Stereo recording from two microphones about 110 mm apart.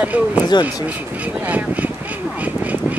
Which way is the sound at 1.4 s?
15° right (ahead or behind).